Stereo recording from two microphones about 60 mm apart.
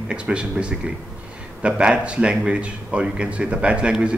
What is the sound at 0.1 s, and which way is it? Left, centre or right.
A man's voice, centre.